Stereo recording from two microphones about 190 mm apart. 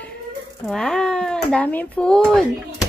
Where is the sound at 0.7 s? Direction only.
5° left (ahead or behind).